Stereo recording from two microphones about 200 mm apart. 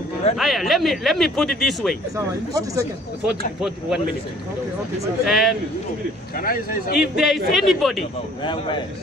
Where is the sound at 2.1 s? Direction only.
15° right (ahead or behind).